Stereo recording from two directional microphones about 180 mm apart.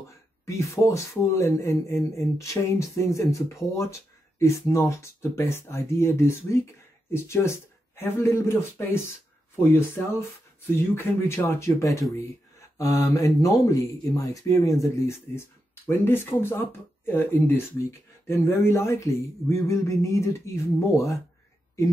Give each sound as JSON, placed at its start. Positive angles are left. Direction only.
{"t": 0.5, "sound": "speech", "side_deg": 15}